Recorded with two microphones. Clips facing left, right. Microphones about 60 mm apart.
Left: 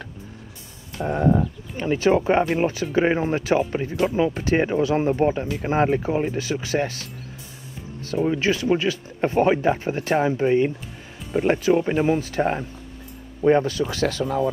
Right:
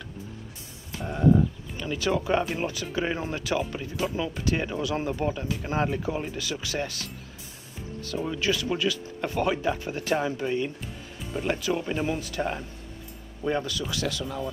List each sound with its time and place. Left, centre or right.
1.0 s speech: left